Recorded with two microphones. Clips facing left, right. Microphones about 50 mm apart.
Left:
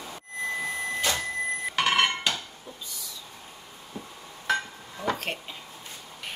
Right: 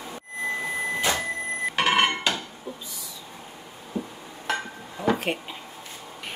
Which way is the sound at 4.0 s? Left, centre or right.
Right.